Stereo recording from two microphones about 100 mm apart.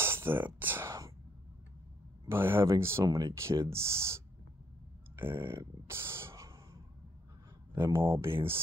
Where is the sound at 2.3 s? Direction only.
25° right (ahead or behind).